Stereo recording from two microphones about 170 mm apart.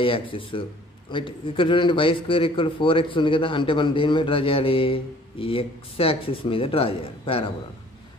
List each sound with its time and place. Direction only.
0.0 s a man's voice: 30° left (ahead or behind)